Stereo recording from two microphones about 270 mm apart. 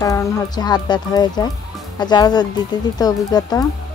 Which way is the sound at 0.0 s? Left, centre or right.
Centre.